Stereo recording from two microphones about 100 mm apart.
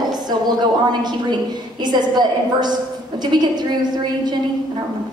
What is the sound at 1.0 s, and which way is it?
A woman's voice, 45° right (ahead or behind).